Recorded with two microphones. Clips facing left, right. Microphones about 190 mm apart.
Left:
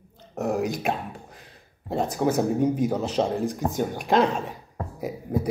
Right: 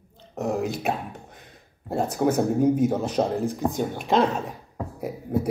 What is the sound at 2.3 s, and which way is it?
Speech, 10° right (ahead or behind).